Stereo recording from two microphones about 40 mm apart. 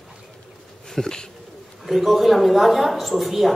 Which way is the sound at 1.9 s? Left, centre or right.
Centre.